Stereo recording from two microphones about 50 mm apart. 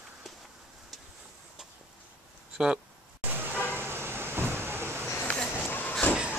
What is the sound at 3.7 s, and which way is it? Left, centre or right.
Vehicle, right.